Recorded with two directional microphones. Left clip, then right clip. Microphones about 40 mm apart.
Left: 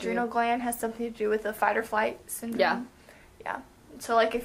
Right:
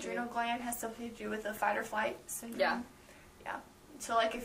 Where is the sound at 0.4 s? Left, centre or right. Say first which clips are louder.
Left 8 dB; left.